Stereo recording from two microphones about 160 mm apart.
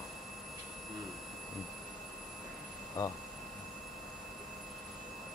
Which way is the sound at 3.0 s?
20° left (ahead or behind).